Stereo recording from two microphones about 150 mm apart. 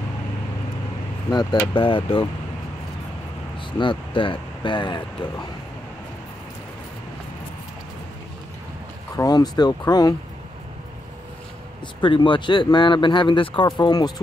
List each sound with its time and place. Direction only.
1.3 s speech: 25° left (ahead or behind)
3.7 s speech: 35° left (ahead or behind)
9.1 s speech: 25° left (ahead or behind)
12.0 s speech: 35° left (ahead or behind)